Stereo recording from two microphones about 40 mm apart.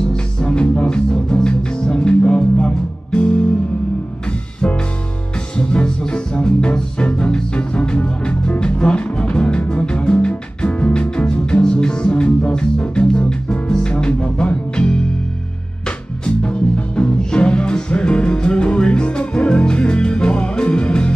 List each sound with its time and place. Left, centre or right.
0.0 s music: centre
5.6 s music: left
16.3 s music: left